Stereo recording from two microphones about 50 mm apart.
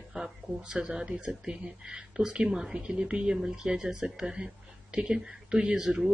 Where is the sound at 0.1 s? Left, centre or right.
Centre.